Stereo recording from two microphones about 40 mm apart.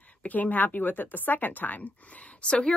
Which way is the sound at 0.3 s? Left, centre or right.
Left.